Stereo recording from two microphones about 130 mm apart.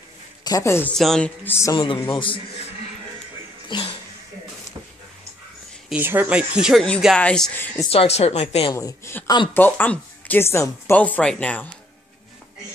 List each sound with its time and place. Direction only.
0.4 s a man's voice: 25° left (ahead or behind)
0.9 s speech: 5° left (ahead or behind)
1.4 s speech: 20° left (ahead or behind)
2.0 s speech: 40° left (ahead or behind)
3.6 s a sound: 40° left (ahead or behind)
5.9 s speech: 15° right (ahead or behind); by 7.8 s 15° left (ahead or behind)
7.9 s speech: 50° left (ahead or behind)
8.7 s speech: 20° left (ahead or behind)
9.5 s speech: 15° left (ahead or behind)